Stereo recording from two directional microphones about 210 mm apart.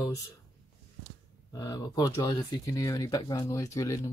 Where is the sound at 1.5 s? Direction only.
15° left (ahead or behind).